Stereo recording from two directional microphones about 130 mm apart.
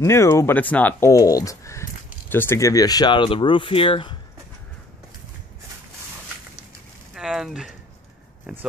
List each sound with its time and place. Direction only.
0.0 s speech: 20° left (ahead or behind)
1.1 s speech: 25° left (ahead or behind)
7.2 s a sound: 5° right (ahead or behind)